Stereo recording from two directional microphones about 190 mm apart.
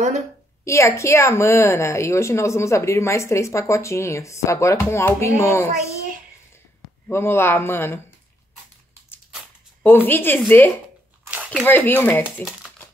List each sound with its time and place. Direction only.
0.7 s a woman's voice: 15° left (ahead or behind)
7.1 s a woman's voice: 10° left (ahead or behind)
9.8 s a woman's voice: 10° left (ahead or behind)
11.2 s a sound: 5° right (ahead or behind)
11.6 s a woman's voice: 10° left (ahead or behind)